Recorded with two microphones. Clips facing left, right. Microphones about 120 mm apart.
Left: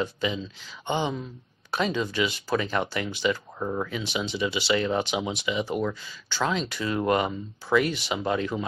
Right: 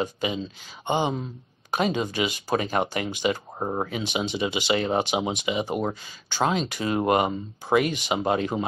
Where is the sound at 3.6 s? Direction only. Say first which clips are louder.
Right 2 dB; 40° right (ahead or behind).